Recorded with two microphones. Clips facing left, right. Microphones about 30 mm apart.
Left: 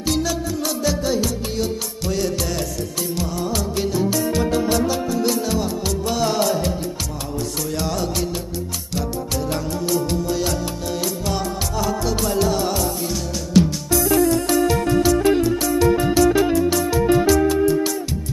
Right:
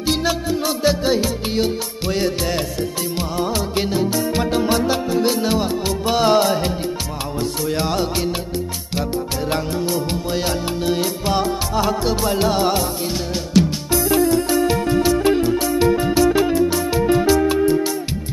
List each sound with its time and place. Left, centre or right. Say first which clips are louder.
0.0 s music: right 2 dB; right
15.4 s music: right 1 dB; right